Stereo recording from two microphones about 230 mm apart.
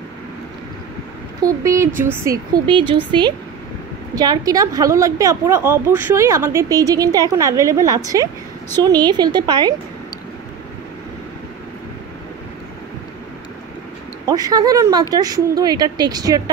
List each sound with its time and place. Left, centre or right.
1.4 s a woman's voice: centre
2.6 s a woman's voice: right
14.2 s a woman's voice: centre